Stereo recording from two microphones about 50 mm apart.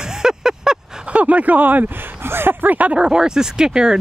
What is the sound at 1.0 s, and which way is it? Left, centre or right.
Speech, right.